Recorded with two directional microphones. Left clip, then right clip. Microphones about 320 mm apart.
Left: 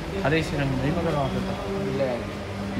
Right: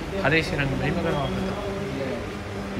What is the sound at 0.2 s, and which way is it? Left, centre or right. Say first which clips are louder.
Speech: right 2 dB; centre.